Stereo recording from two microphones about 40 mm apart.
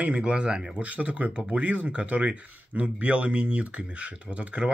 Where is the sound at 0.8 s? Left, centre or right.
Right.